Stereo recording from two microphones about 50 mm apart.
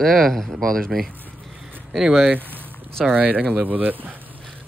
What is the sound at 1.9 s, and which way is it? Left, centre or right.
Speech, centre.